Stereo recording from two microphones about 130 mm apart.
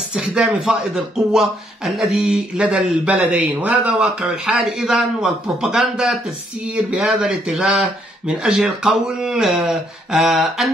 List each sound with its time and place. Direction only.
0.1 s a man's voice: 5° right (ahead or behind)